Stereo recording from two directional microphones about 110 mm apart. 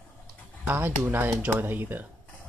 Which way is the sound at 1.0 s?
15° right (ahead or behind).